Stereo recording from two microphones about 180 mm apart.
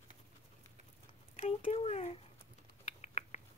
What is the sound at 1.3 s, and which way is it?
Speech, 35° left (ahead or behind).